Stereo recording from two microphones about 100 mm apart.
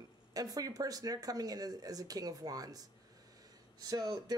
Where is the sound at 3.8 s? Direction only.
40° right (ahead or behind).